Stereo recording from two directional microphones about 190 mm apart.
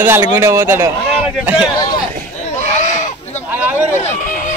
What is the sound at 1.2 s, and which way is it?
Speech, 5° right (ahead or behind).